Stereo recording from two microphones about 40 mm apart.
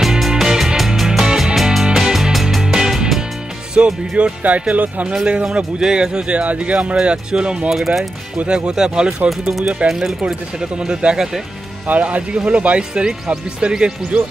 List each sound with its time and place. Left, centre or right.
0.0 s music: centre
3.7 s speech: right
4.4 s speech: right
5.2 s speech: right
6.4 s speech: right
7.0 s speech: right
7.7 s speech: centre
8.5 s speech: right
11.9 s speech: right